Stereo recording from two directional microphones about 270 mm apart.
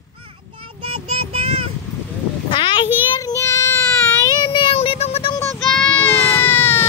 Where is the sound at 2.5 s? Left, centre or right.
Centre.